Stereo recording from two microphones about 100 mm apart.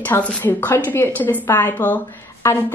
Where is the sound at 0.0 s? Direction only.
15° left (ahead or behind).